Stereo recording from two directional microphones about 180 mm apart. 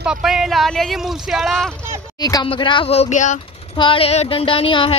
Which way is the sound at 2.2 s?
20° left (ahead or behind).